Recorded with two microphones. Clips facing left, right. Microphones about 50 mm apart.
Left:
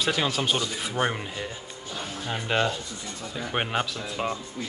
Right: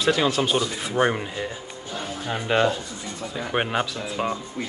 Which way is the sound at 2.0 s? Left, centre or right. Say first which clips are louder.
Right 4 dB; centre.